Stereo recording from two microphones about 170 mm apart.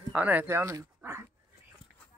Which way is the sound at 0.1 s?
10° right (ahead or behind).